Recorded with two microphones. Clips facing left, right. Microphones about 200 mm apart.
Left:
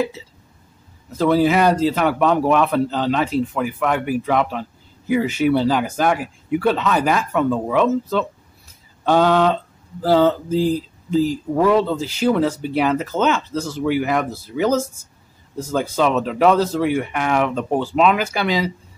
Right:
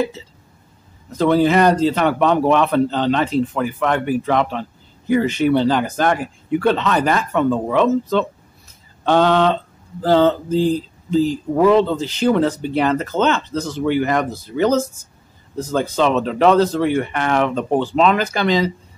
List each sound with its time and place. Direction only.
1.1 s a man's voice: 5° left (ahead or behind)